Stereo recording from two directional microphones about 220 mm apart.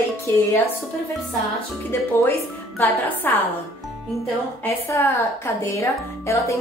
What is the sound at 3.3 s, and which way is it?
Speech, 10° left (ahead or behind).